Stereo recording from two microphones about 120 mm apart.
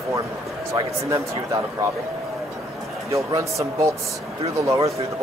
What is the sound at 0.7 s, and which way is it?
A man's voice, 30° right (ahead or behind).